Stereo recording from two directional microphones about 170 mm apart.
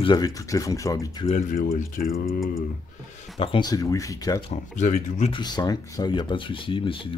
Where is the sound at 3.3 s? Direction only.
25° left (ahead or behind).